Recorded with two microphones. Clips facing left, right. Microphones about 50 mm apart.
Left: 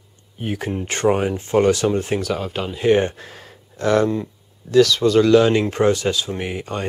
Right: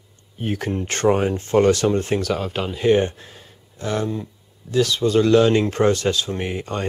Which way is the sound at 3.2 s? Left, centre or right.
Left.